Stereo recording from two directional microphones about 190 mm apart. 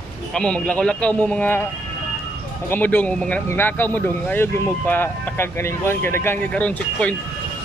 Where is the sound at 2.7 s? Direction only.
10° left (ahead or behind).